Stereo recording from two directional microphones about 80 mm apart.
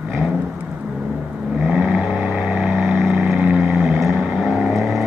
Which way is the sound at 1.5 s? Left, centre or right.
Centre.